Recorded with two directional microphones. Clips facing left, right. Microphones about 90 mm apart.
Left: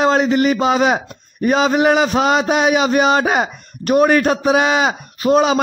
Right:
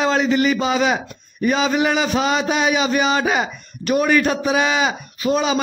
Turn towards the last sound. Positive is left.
turn(degrees=55)  # may be behind; listen again after turning